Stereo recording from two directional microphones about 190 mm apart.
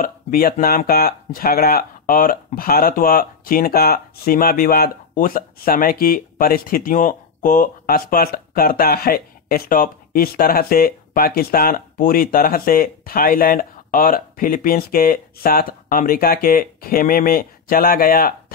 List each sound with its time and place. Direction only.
0.0 s speech: 50° left (ahead or behind)